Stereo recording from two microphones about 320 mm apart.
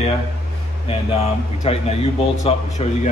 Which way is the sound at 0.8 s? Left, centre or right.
Centre.